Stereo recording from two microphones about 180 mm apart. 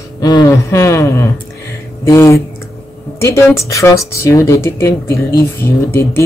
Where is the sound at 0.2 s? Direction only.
20° left (ahead or behind).